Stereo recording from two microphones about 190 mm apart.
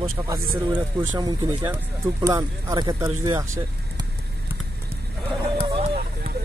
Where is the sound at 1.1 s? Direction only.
20° right (ahead or behind).